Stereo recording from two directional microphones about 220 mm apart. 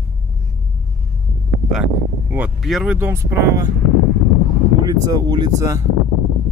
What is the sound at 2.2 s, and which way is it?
Speech, 5° right (ahead or behind).